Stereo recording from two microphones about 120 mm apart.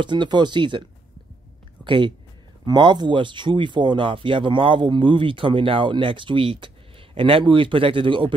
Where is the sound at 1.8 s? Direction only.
45° right (ahead or behind).